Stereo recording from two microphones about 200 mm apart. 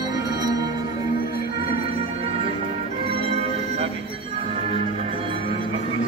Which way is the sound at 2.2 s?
30° right (ahead or behind).